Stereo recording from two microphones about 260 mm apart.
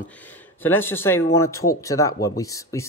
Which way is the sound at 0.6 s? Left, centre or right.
Centre.